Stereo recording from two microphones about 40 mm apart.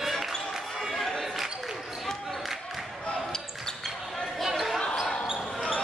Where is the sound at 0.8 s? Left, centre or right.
Centre.